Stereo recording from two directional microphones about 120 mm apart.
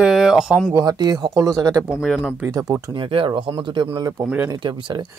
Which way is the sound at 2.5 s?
30° right (ahead or behind).